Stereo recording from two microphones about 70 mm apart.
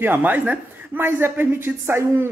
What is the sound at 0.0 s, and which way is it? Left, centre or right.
Speech, right.